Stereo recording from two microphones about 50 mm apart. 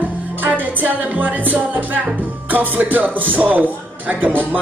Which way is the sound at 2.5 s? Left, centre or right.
Right.